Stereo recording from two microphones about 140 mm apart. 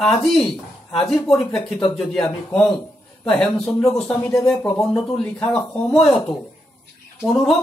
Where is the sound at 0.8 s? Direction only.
5° left (ahead or behind).